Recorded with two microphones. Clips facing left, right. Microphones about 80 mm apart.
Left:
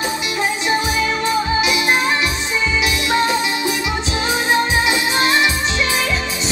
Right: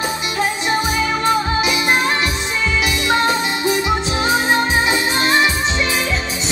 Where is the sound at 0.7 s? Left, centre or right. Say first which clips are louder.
Left 1 dB; right.